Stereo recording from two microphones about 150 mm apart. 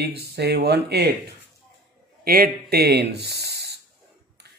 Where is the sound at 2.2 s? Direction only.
80° right.